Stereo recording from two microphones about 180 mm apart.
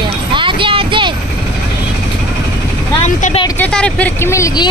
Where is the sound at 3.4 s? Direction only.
10° left (ahead or behind).